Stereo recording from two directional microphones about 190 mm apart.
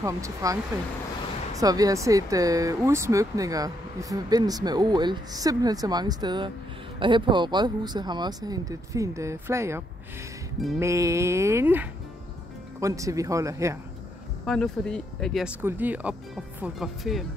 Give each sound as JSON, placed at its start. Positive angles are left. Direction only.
{"t": 0.0, "sound": "speech", "side_deg": -15}
{"t": 1.6, "sound": "speech", "side_deg": -20}
{"t": 14.4, "sound": "speech", "side_deg": 0}